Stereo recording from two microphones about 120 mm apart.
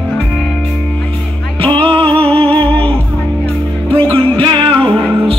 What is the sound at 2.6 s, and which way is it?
Music, 10° left (ahead or behind).